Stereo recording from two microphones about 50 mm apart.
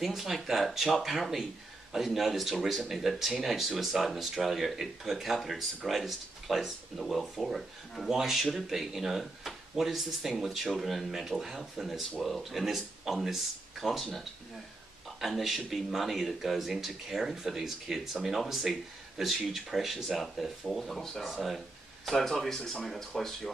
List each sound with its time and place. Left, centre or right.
0.0 s speech: centre